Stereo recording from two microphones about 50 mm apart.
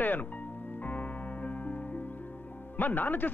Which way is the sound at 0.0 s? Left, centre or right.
Left.